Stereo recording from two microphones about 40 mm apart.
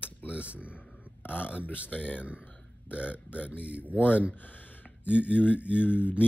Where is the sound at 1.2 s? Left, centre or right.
Left.